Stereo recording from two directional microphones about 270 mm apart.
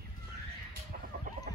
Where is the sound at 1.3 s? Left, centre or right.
Right.